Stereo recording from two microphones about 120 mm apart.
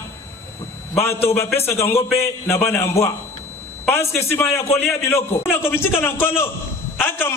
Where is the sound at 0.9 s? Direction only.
20° left (ahead or behind).